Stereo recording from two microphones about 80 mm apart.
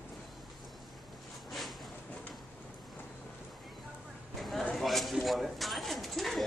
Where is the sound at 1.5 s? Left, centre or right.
Centre.